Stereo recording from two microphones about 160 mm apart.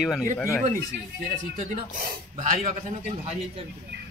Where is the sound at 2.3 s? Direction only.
45° right (ahead or behind).